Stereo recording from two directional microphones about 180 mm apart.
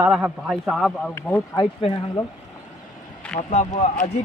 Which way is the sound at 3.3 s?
40° left (ahead or behind).